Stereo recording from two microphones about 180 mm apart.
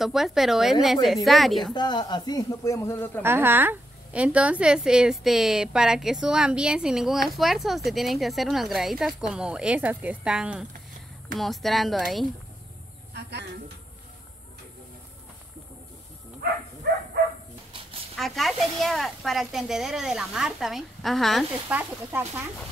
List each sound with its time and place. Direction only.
0.0 s speech: centre (ahead or behind)
1.7 s speech: 25° left (ahead or behind)
3.2 s speech: 10° right (ahead or behind)
13.1 s a sound: 70° right (ahead or behind)
18.1 s speech: centre (ahead or behind)
21.7 s speech: 10° right (ahead or behind)